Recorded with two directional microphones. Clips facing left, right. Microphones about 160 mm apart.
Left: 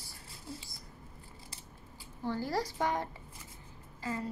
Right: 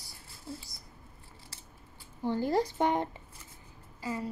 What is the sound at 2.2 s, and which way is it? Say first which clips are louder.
A woman's voice: right 5 dB; 20° right (ahead or behind).